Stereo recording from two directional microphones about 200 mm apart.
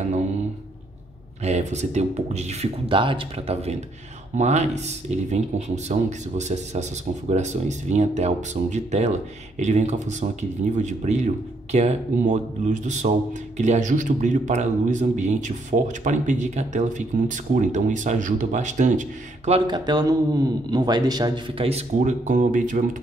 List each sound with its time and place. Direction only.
1.4 s speech: 35° right (ahead or behind)
19.6 s a man's voice: 20° right (ahead or behind); by 22.8 s 40° right (ahead or behind)